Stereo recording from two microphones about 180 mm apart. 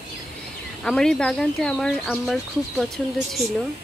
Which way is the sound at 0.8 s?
5° left (ahead or behind).